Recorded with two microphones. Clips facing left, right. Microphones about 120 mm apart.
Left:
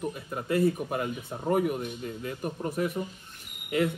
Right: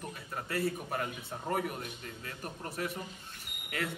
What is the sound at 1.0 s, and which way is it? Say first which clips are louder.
A man's voice: left 7 dB; 10° left (ahead or behind).